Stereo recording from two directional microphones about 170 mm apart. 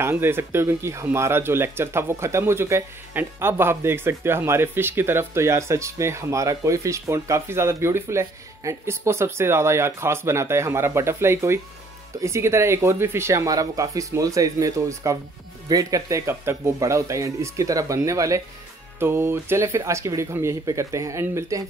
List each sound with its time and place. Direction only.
0.0 s speech: 15° right (ahead or behind)